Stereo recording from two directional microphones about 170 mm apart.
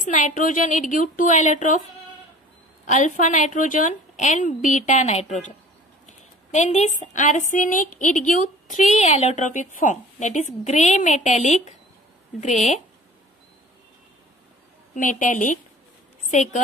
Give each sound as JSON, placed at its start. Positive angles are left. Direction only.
{"t": 0.0, "sound": "speech", "side_deg": 50}
{"t": 2.9, "sound": "speech", "side_deg": 50}
{"t": 15.0, "sound": "a woman's voice", "side_deg": 50}